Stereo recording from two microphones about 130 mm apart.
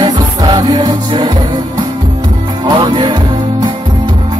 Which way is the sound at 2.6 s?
35° right (ahead or behind).